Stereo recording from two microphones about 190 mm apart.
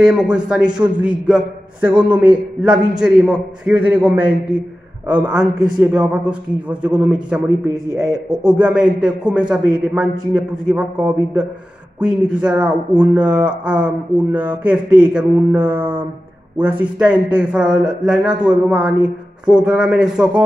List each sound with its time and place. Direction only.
0.0 s a man's voice: 5° right (ahead or behind)
3.0 s mantra: 5° right (ahead or behind)
5.0 s a man's voice: 5° right (ahead or behind)
12.9 s mantra: 5° right (ahead or behind)
16.5 s a man's voice: 10° right (ahead or behind)